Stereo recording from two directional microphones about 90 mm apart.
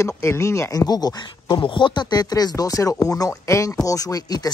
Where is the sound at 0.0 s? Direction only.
30° left (ahead or behind).